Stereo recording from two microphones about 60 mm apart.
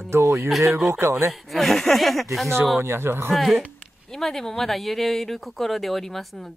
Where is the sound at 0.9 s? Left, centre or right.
Right.